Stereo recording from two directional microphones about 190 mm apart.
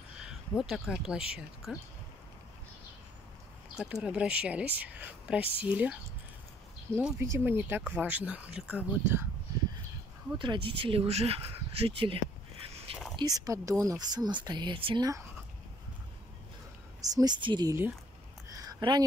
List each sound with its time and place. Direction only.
0.6 s speech: centre (ahead or behind)
3.7 s speech: 5° right (ahead or behind)
7.0 s speech: 10° right (ahead or behind)
10.4 s speech: 25° right (ahead or behind)
17.1 s speech: 20° right (ahead or behind)
18.5 s a sound: 20° right (ahead or behind)